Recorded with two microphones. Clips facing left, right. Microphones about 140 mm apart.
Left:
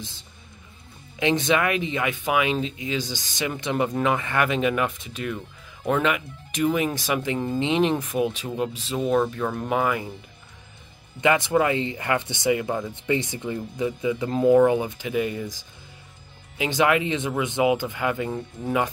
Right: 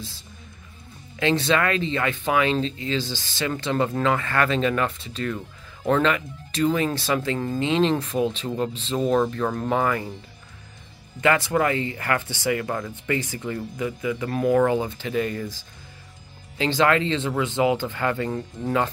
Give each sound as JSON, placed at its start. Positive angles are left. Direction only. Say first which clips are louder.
{"t": 1.2, "sound": "speech", "louder": "even", "side_deg": 15}
{"t": 11.1, "sound": "speech", "louder": "left 1 dB", "side_deg": 20}